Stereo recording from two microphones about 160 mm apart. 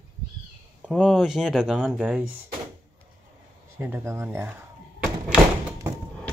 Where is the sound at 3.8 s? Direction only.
15° right (ahead or behind).